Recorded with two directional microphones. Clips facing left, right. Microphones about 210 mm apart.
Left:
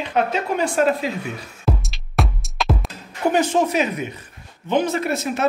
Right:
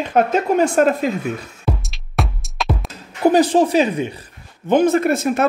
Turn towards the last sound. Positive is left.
turn(degrees=-50)  # may be behind; listen again after turning